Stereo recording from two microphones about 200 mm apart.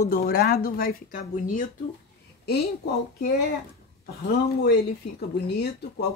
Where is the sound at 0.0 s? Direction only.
40° left (ahead or behind).